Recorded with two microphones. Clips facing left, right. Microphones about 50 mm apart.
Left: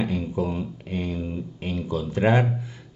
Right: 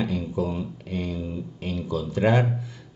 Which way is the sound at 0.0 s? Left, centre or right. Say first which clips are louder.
Left 1 dB; left.